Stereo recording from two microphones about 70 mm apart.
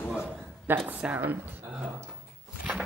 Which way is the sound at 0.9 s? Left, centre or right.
Right.